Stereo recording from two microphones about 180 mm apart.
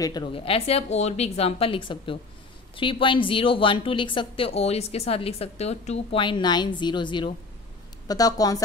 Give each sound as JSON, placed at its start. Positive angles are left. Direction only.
{"t": 0.0, "sound": "a woman's voice", "side_deg": 25}